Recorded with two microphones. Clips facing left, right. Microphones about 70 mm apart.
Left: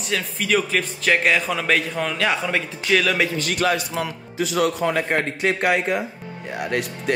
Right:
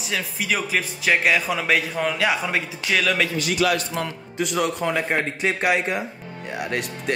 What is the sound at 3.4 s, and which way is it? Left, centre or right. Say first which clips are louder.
Speech: right 1 dB; left.